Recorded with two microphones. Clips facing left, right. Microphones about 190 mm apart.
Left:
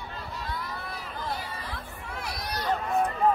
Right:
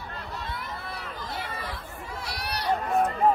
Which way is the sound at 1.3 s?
70° right (ahead or behind).